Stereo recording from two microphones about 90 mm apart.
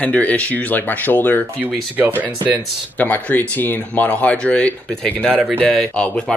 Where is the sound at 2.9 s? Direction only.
20° left (ahead or behind).